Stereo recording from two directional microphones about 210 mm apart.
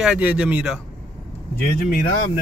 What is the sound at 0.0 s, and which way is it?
Speech, 5° right (ahead or behind).